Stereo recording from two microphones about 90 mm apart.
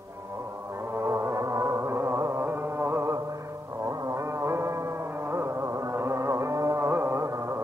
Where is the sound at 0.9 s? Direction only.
30° right (ahead or behind).